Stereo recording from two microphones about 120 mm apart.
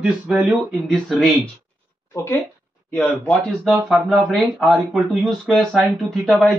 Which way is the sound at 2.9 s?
5° left (ahead or behind).